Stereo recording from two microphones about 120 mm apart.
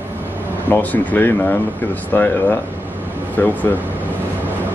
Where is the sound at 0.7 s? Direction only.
15° left (ahead or behind).